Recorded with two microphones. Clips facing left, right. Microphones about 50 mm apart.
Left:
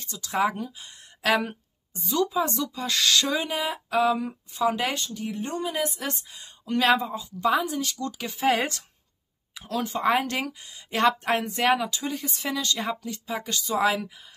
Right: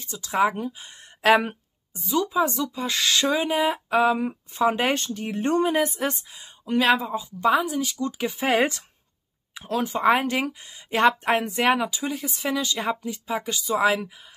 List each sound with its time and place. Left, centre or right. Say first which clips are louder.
0.0 s speech: right 3 dB; centre
2.0 s speech: right 2 dB; centre; by 4.9 s right
4.9 s speech: right 3 dB; right
5.8 s speech: right 5 dB; right
6.1 s speech: right 1 dB; centre
7.5 s speech: right 2 dB; centre
7.9 s speech: right 5 dB; right; by 12.5 s centre
12.5 s speech: right 2 dB; centre